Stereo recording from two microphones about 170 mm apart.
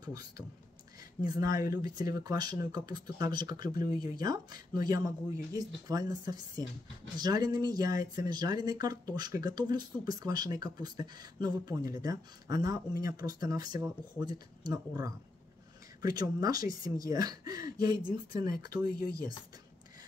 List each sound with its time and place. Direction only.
0.0 s speech: 20° right (ahead or behind)